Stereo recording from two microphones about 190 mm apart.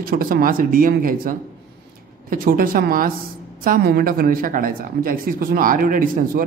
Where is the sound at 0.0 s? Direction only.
50° right (ahead or behind).